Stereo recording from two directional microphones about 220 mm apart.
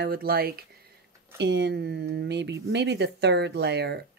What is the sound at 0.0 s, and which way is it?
Speech, 45° right (ahead or behind).